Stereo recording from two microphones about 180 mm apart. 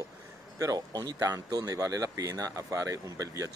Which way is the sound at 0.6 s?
20° right (ahead or behind).